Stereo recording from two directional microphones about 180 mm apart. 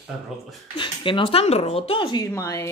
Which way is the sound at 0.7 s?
25° left (ahead or behind).